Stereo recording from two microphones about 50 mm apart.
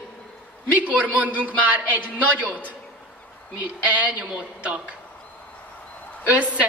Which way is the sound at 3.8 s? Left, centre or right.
Right.